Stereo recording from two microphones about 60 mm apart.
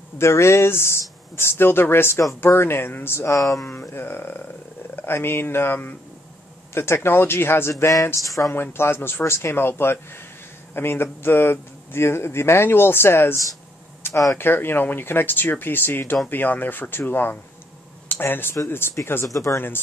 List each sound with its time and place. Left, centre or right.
0.2 s speech: left
3.3 s speech: left
3.9 s speech: left
7.9 s speech: left
8.5 s speech: left
19.2 s speech: left